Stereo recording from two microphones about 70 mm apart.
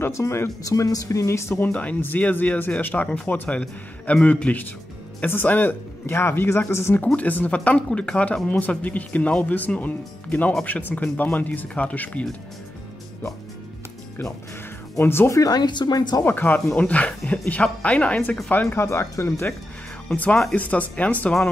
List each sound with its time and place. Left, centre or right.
0.0 s speech: left
0.7 s speech: left
1.6 s speech: left
6.0 s speech: left
7.2 s speech: left
15.0 s speech: left
15.3 s speech: left
16.3 s speech: left
18.5 s speech: left
20.5 s speech: left